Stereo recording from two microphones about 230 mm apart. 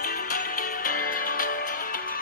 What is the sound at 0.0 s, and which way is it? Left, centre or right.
Music, left.